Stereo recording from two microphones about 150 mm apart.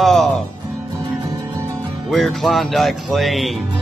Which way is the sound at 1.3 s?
20° right (ahead or behind).